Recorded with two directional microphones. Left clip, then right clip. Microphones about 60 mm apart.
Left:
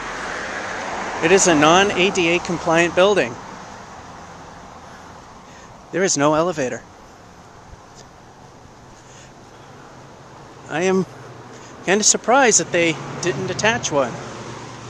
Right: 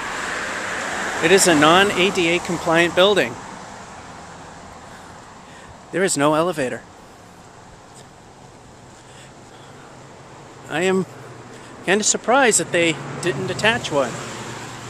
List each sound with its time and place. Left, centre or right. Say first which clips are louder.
0.0 s vehicle: right 2 dB; right
1.2 s speech: even; left
3.3 s vehicle: even; centre
5.9 s speech: left 1 dB; left
10.7 s speech: left 1 dB; left
14.1 s a sound: right 1 dB; right